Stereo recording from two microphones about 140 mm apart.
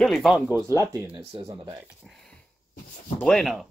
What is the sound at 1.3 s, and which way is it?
Speech, 40° right (ahead or behind).